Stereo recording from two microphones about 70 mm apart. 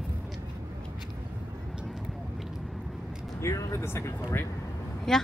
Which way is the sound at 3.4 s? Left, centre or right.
Left.